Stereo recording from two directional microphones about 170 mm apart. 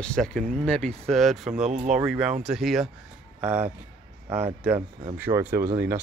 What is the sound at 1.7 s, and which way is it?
Speech, 45° right (ahead or behind).